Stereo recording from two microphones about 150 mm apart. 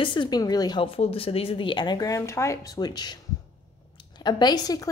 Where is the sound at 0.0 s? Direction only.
35° left (ahead or behind).